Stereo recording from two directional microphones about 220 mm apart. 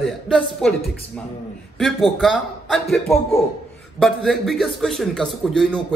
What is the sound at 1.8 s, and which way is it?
A man's voice, centre (ahead or behind).